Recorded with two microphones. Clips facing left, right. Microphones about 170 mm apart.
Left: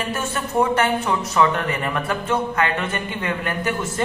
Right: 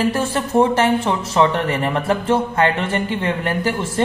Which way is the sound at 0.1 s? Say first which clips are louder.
Right 5 dB; 30° right (ahead or behind).